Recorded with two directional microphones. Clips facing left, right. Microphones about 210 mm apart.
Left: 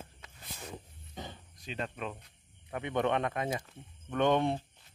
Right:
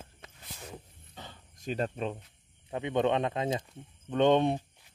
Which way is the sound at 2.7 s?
20° right (ahead or behind).